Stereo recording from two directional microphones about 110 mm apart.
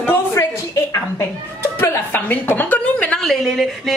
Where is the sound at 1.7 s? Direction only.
20° left (ahead or behind).